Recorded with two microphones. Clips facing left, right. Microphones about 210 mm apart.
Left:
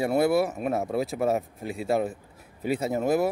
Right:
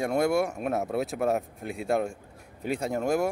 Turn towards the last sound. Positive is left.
turn(degrees=5)  # may be behind; listen again after turning